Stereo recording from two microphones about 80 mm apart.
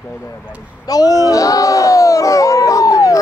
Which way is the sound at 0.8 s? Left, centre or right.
Left.